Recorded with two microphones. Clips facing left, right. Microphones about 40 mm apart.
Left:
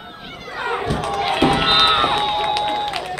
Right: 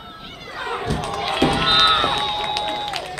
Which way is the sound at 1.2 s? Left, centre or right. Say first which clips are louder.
Left 2 dB; centre.